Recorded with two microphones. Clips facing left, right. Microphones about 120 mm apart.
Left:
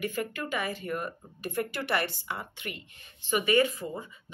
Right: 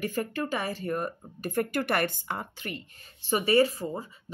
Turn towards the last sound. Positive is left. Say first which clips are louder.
# right 2 dB
turn(degrees=-35)  # may be behind; listen again after turning